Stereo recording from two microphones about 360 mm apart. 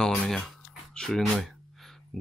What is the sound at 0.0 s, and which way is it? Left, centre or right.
Speech, centre.